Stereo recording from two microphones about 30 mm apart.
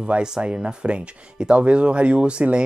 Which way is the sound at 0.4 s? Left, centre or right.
Right.